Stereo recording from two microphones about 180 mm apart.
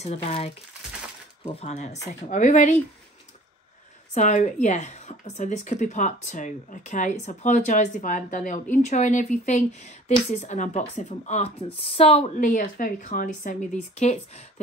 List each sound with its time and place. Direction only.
0.0 s a woman's voice: 35° left (ahead or behind)
4.1 s a woman's voice: 40° left (ahead or behind)